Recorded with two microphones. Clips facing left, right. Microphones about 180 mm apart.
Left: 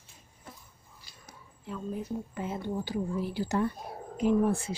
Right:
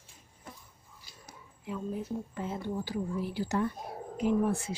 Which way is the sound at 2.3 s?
10° left (ahead or behind).